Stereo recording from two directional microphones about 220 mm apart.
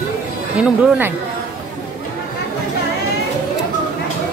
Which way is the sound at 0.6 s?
5° right (ahead or behind).